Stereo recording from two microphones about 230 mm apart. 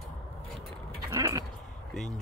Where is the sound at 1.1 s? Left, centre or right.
Centre.